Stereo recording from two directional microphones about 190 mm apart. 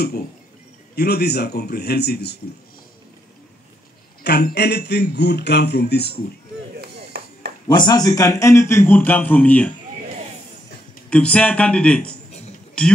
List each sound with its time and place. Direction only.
0.9 s speech: 55° left (ahead or behind)
4.2 s speech: 60° left (ahead or behind)
6.8 s chop: 55° right (ahead or behind)
7.6 s a man's voice: 20° left (ahead or behind)
11.1 s speech: 5° left (ahead or behind)